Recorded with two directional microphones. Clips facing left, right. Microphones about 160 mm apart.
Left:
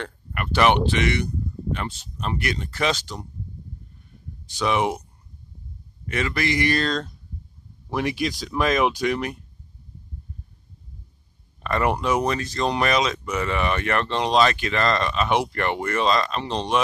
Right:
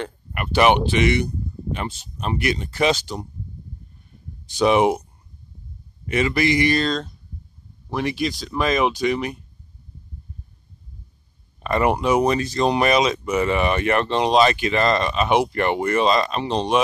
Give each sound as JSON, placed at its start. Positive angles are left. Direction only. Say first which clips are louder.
{"t": 0.0, "sound": "speech", "louder": "right 2 dB", "side_deg": -15}
{"t": 4.6, "sound": "speech", "louder": "right 6 dB", "side_deg": -15}
{"t": 6.0, "sound": "speech", "louder": "right 5 dB", "side_deg": -10}
{"t": 11.6, "sound": "speech", "louder": "right 3 dB", "side_deg": -10}